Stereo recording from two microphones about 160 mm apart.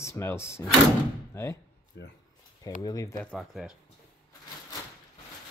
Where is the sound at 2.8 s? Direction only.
25° left (ahead or behind).